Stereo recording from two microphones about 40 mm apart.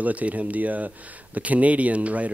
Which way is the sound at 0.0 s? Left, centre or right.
Right.